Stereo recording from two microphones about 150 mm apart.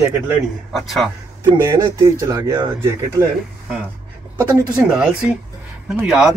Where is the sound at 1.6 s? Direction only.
25° right (ahead or behind).